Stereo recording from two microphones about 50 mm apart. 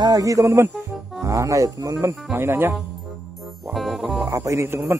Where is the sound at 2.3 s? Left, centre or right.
Right.